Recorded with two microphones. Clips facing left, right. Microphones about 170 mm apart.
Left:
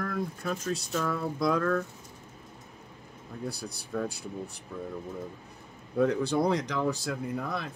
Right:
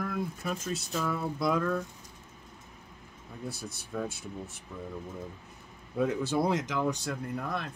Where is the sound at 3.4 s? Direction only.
Centre (ahead or behind).